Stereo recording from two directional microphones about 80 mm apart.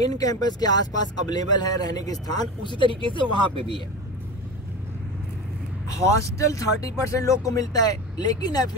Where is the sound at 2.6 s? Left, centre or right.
Left.